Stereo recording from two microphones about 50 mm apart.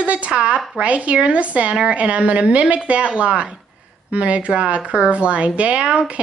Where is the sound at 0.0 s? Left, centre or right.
Right.